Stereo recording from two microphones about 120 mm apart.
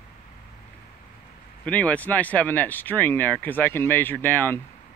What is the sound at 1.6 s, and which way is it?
Speech, 10° left (ahead or behind).